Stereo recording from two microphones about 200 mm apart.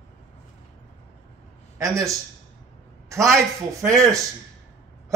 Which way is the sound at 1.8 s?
15° right (ahead or behind).